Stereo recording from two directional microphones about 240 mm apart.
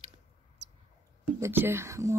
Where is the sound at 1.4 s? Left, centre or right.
Centre.